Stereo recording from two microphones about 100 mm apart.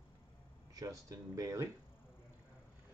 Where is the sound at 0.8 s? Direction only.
35° right (ahead or behind).